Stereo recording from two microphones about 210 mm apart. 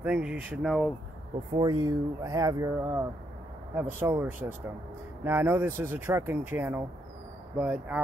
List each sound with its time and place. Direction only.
0.0 s speech: 5° right (ahead or behind)
1.6 s speech: 20° right (ahead or behind)